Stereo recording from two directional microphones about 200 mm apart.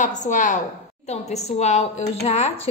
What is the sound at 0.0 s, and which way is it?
A woman's voice, 40° left (ahead or behind).